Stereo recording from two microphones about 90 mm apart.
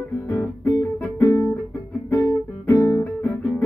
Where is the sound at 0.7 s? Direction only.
25° left (ahead or behind).